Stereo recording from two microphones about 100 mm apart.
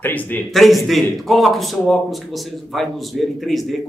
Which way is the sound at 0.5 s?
Centre (ahead or behind).